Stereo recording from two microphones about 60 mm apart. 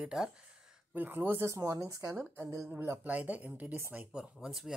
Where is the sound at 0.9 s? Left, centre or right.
Right.